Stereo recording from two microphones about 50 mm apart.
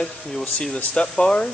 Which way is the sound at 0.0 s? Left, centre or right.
Centre.